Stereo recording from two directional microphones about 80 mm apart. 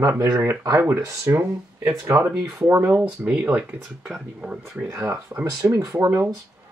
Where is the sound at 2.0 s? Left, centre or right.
Right.